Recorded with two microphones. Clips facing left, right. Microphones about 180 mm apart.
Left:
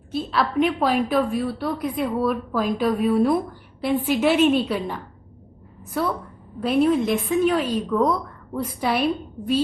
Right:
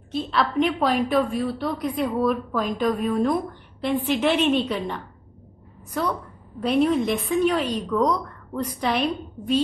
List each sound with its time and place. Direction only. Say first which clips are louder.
0.1 s a woman's voice: left 1 dB; 5° left (ahead or behind)
6.6 s a woman's voice: left 1 dB; 5° left (ahead or behind)